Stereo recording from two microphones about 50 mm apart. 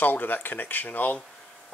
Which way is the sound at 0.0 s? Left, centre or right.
Left.